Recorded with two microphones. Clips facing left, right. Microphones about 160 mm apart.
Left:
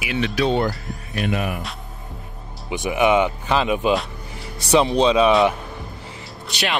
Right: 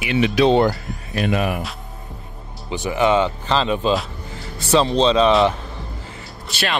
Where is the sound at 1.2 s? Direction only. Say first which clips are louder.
Right 3 dB; 90° right.